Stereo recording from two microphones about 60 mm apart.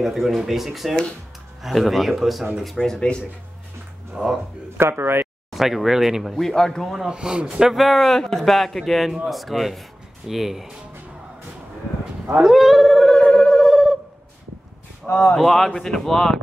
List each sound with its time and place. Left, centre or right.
0.0 s a man's voice: centre
4.1 s speech: centre
4.7 s speech: right
5.5 s a man's voice: centre
7.1 s a man's voice: centre
12.4 s a sound: centre
13.0 s a sound: centre
13.6 s a sound: centre
15.3 s a man's voice: centre